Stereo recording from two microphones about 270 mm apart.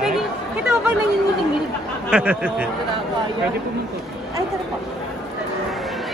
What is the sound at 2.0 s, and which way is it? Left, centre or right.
Speech, centre.